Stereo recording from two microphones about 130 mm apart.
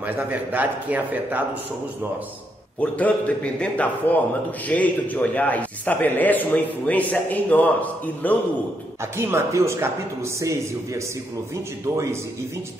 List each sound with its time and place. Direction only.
0.0 s a man's voice: 15° right (ahead or behind)
2.8 s a man's voice: 10° left (ahead or behind)
9.0 s speech: 20° right (ahead or behind)